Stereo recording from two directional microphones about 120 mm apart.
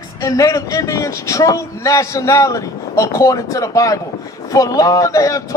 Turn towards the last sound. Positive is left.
turn(degrees=30)  # may be behind; listen again after turning